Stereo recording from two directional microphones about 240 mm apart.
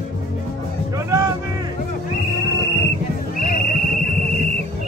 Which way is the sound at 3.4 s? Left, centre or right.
Left.